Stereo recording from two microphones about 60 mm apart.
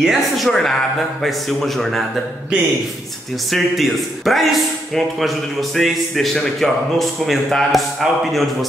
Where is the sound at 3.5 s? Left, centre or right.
Centre.